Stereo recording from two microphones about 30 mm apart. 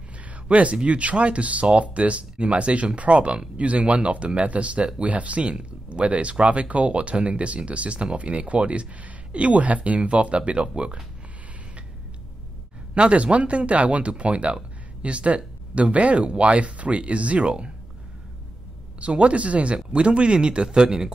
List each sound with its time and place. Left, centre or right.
0.5 s speech: right
5.4 s speech: right
12.9 s speech: right
18.9 s speech: right